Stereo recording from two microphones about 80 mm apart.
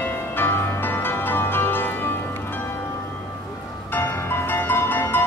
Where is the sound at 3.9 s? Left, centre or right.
Left.